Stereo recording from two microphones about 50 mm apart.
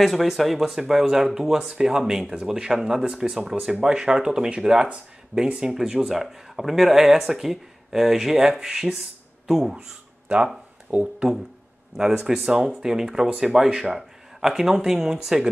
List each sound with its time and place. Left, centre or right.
0.0 s speech: centre
8.5 s speech: right
8.7 s speech: centre
12.0 s speech: centre